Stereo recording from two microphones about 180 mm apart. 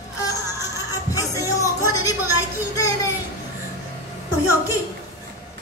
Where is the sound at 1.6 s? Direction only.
20° left (ahead or behind).